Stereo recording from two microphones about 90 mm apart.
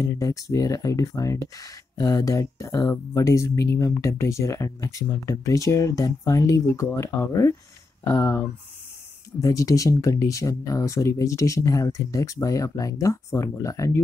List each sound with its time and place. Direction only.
0.1 s speech: 35° left (ahead or behind)